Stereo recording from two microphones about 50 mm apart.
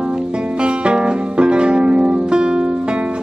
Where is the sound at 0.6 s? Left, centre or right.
Right.